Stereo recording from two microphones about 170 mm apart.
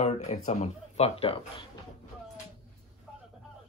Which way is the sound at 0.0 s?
40° left (ahead or behind).